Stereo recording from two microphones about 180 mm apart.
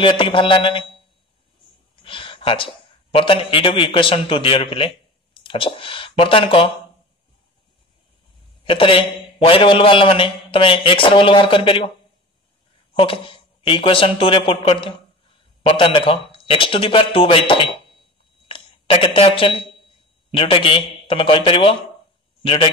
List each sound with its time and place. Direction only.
0.0 s a man's voice: 30° left (ahead or behind)
2.0 s a man's voice: 30° left (ahead or behind)
8.6 s a man's voice: 30° left (ahead or behind)
12.9 s a man's voice: 30° left (ahead or behind)